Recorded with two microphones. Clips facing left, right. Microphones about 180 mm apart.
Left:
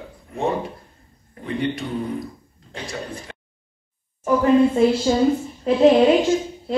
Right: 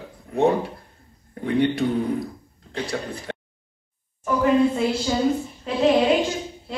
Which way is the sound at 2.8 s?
65° right (ahead or behind).